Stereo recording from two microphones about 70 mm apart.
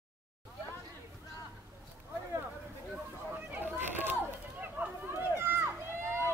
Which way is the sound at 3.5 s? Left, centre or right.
Right.